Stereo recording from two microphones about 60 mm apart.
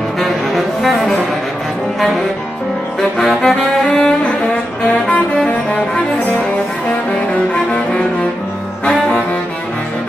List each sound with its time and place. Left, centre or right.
0.2 s music: centre
3.0 s saxophone: centre
7.7 s cello: centre